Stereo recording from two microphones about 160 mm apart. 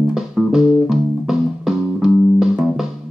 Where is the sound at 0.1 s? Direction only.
5° right (ahead or behind).